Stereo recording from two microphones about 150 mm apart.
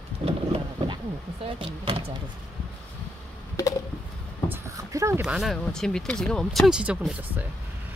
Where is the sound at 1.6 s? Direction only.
35° right (ahead or behind).